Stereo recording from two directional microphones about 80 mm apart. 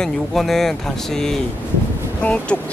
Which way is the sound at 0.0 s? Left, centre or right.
Centre.